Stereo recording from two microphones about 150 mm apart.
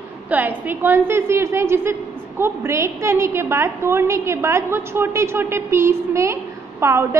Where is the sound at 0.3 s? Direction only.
10° right (ahead or behind).